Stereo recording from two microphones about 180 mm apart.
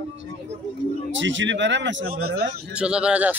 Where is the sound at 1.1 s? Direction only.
90° right.